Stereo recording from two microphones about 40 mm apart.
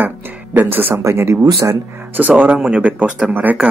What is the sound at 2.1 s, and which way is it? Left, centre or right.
Speech, right.